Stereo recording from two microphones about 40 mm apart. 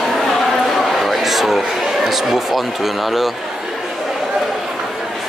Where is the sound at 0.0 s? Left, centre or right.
Centre.